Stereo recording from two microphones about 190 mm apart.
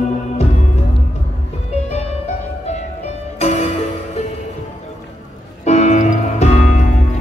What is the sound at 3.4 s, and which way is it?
Music, 35° left (ahead or behind).